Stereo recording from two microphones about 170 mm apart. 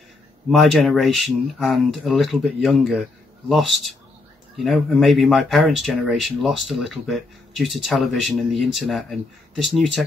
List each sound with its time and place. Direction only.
0.5 s speech: centre (ahead or behind)